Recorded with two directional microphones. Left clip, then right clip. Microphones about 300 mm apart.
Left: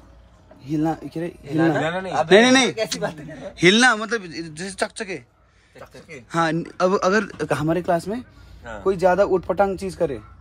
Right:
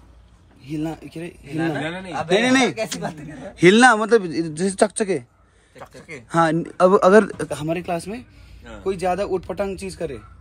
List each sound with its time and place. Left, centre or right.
0.7 s speech: centre
1.6 s speech: left
2.5 s a man's voice: centre
6.1 s a man's voice: centre
7.6 s speech: centre